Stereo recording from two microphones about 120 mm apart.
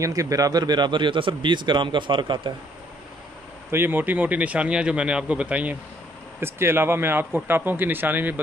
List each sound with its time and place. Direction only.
0.0 s speech: 30° right (ahead or behind)
3.7 s speech: 15° right (ahead or behind)